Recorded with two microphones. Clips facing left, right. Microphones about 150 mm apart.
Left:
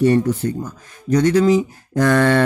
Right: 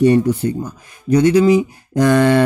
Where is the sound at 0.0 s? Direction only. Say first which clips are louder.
Right 3 dB; 15° right (ahead or behind).